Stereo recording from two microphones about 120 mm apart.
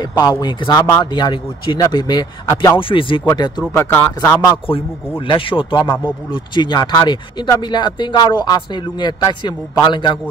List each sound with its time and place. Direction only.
0.0 s speech: 35° left (ahead or behind)
0.7 s speech: 20° left (ahead or behind)
1.1 s speech: 40° left (ahead or behind)
2.8 s speech: 45° left (ahead or behind)
3.3 s speech: 35° left (ahead or behind)
3.7 s speech: 15° left (ahead or behind)
5.2 s speech: 45° left (ahead or behind)